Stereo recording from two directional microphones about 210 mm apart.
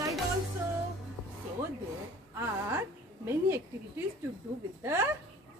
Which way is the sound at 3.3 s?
10° right (ahead or behind).